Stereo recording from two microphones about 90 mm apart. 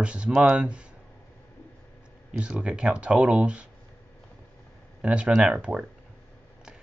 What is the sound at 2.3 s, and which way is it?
Speech, 10° right (ahead or behind).